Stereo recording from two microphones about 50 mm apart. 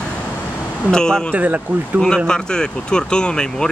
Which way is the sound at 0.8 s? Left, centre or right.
Centre.